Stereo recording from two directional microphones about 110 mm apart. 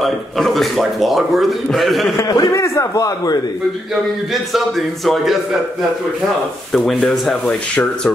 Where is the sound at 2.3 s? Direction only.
35° left (ahead or behind).